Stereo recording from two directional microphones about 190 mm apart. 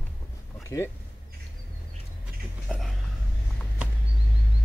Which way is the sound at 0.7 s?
15° left (ahead or behind).